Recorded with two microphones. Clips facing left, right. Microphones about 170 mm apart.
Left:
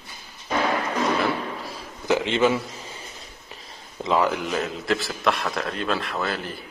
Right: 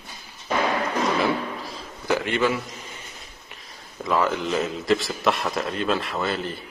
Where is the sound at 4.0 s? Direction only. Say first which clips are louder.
Left 1 dB; 15° left (ahead or behind).